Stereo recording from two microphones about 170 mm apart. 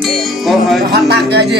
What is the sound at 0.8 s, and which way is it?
Speech, 75° right (ahead or behind).